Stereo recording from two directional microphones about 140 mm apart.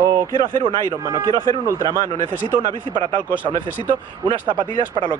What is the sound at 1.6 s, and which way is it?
Speech, 20° right (ahead or behind).